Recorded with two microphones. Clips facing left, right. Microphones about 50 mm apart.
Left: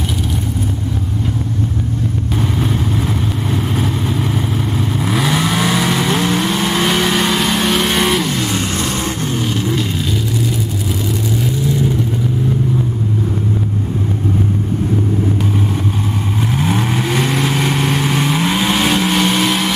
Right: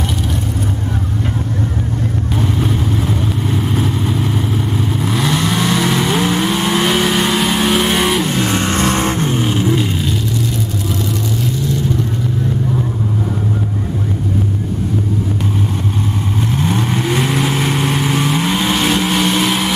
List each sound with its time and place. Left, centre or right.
3.7 s vehicle: centre
8.2 s vehicle: centre
8.5 s vehicle: right
16.5 s vehicle: centre